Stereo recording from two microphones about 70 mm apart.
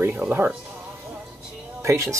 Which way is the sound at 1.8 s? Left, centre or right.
Right.